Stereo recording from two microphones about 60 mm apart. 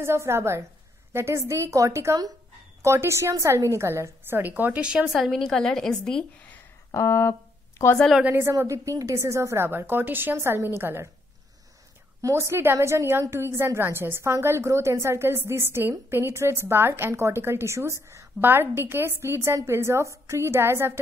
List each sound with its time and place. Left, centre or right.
0.0 s a woman's voice: right
4.4 s a woman's voice: right
4.9 s a woman's voice: centre
5.2 s a woman's voice: centre
7.0 s speech: left
8.4 s a woman's voice: right
9.7 s a woman's voice: right
12.2 s a woman's voice: right
18.4 s a woman's voice: right